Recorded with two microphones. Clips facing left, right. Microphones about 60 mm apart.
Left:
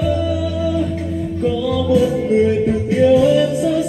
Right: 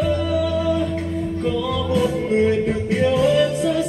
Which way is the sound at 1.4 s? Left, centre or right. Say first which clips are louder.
Left 6 dB; right.